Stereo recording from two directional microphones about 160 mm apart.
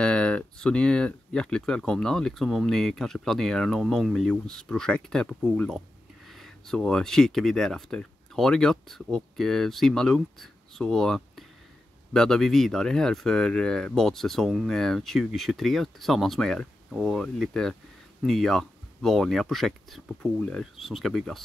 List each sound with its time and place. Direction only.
0.0 s speech: 5° left (ahead or behind)